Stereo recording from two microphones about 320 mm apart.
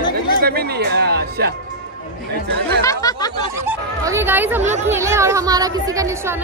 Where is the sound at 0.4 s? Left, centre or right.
Right.